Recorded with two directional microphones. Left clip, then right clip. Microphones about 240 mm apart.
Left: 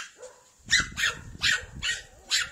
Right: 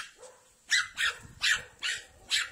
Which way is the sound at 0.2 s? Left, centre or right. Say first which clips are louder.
Left 5 dB; centre.